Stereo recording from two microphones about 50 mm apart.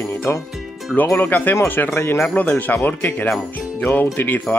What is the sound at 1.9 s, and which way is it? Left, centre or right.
Speech, left.